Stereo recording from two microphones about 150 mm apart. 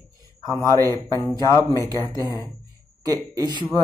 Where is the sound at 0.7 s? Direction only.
20° right (ahead or behind).